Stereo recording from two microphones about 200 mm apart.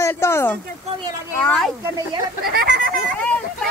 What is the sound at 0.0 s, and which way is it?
Speech, 15° left (ahead or behind).